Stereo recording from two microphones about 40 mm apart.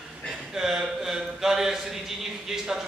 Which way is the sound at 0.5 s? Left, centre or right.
Centre.